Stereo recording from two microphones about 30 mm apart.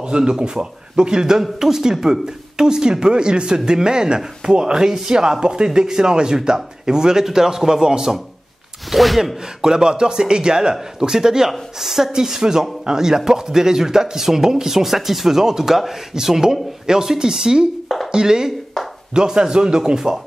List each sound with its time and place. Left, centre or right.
0.0 s speech: right
8.9 s speech: centre
9.2 s speech: centre
17.8 s a sound: centre
18.1 s speech: right